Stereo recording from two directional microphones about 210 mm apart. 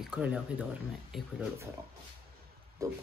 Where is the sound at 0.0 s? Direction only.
5° right (ahead or behind).